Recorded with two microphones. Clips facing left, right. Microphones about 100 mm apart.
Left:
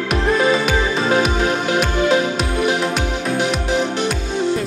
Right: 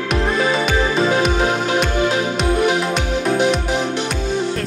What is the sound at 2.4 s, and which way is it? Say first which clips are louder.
Music: right 4 dB; centre (ahead or behind).